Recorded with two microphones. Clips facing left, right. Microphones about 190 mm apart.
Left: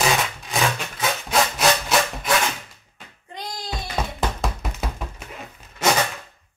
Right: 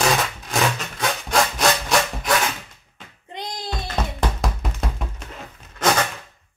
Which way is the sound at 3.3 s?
20° right (ahead or behind).